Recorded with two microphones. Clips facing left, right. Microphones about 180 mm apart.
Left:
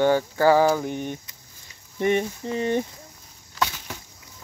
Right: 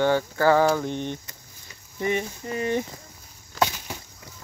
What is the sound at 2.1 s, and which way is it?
Speech, 25° left (ahead or behind).